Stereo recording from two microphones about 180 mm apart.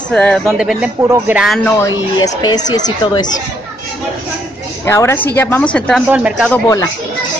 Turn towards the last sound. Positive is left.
turn(degrees=20)  # may be behind; listen again after turning